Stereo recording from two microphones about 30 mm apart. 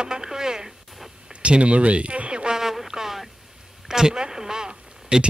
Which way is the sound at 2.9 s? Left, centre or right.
Centre.